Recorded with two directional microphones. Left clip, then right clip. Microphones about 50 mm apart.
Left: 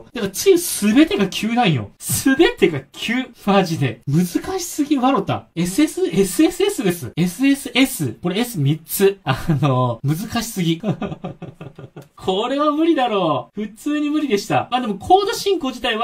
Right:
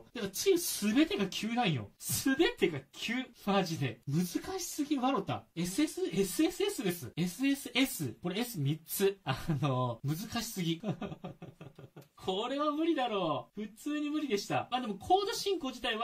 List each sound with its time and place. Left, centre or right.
0.1 s speech: right